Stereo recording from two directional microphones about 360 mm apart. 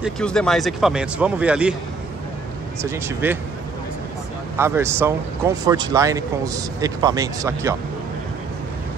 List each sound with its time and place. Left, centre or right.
0.0 s speech: centre
2.8 s speech: centre
4.6 s speech: centre